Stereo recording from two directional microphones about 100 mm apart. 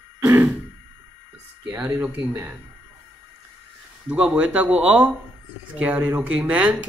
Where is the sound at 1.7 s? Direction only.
20° right (ahead or behind).